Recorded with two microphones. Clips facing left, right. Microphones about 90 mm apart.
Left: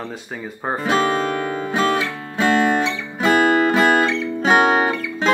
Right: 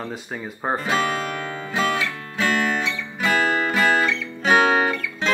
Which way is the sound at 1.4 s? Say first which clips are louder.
Left 4 dB; 20° left (ahead or behind).